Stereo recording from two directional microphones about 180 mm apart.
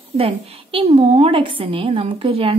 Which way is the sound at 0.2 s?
30° right (ahead or behind).